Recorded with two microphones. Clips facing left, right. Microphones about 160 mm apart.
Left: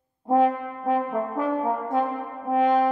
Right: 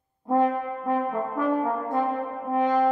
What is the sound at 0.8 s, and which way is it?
French horn, 25° left (ahead or behind).